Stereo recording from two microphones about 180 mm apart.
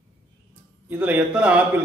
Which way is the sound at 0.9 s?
10° right (ahead or behind).